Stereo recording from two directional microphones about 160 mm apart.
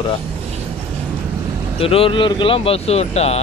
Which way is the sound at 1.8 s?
35° left (ahead or behind).